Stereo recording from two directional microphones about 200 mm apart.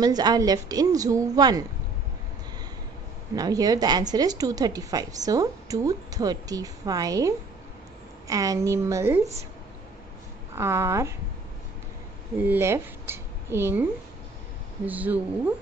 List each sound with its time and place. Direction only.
0.0 s a woman's voice: 20° right (ahead or behind)
3.3 s a woman's voice: 20° right (ahead or behind)
10.5 s a woman's voice: 15° right (ahead or behind)
12.4 s speech: 10° right (ahead or behind)
14.9 s a woman's voice: 10° right (ahead or behind)